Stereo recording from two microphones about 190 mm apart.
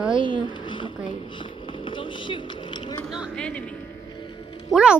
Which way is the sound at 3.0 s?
Centre (ahead or behind).